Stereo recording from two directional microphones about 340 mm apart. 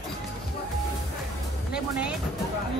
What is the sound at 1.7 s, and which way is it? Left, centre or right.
Speech, centre.